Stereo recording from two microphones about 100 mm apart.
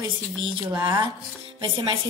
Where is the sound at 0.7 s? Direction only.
25° right (ahead or behind).